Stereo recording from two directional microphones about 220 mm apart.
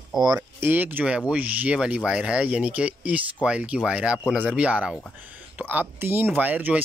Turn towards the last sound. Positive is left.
turn(degrees=-5)  # may be behind; listen again after turning